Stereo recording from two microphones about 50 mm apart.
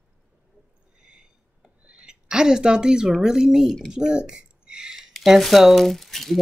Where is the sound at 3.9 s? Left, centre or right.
Centre.